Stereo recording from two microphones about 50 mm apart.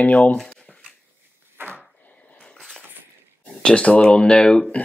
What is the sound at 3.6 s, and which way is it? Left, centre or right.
Speech, left.